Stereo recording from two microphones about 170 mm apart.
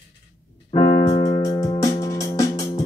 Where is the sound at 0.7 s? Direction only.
25° left (ahead or behind).